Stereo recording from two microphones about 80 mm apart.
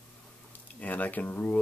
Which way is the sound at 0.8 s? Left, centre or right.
Left.